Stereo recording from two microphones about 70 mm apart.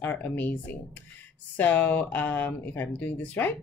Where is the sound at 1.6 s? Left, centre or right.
Left.